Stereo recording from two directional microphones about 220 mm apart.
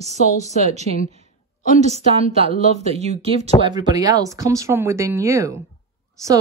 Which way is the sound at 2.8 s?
30° right (ahead or behind).